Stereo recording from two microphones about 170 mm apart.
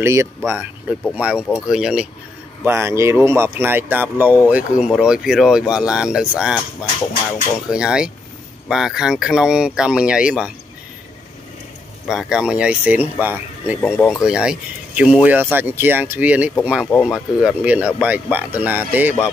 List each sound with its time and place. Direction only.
0.0 s speech: 15° right (ahead or behind)
2.6 s speech: 15° right (ahead or behind)
7.7 s speech: 5° right (ahead or behind)
12.1 s speech: 5° right (ahead or behind)
13.8 s speech: 10° left (ahead or behind)
14.1 s speech: 5° right (ahead or behind)